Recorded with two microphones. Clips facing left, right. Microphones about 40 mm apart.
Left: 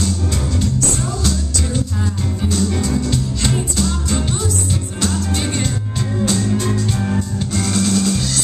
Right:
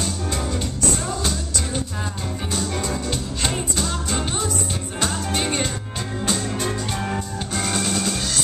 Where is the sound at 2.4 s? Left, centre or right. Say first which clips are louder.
Left 6 dB; right.